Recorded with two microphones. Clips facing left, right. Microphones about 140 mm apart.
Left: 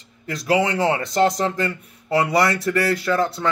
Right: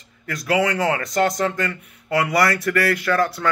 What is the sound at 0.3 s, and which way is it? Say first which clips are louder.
Speech: left 1 dB; 25° left (ahead or behind).